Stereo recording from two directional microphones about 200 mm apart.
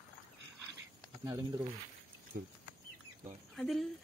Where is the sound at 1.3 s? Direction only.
20° right (ahead or behind).